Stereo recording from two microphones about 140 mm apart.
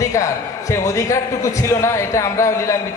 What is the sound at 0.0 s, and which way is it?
A man's voice, 20° left (ahead or behind).